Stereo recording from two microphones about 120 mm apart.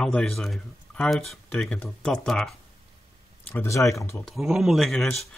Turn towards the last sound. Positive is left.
turn(degrees=0)  # may be behind; listen again after turning